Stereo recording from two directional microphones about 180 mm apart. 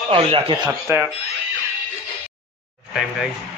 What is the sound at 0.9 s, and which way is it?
Speech, 15° right (ahead or behind).